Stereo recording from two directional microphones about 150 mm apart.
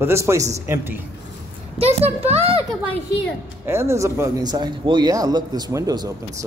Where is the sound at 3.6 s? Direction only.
15° right (ahead or behind).